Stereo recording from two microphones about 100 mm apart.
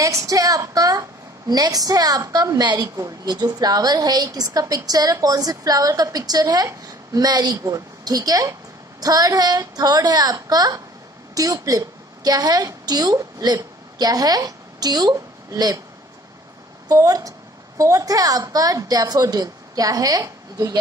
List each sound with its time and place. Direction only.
0.0 s a woman's voice: 35° right (ahead or behind)
16.9 s a woman's voice: 35° right (ahead or behind)